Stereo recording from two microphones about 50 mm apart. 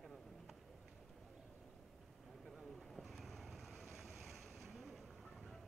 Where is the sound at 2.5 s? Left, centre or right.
Centre.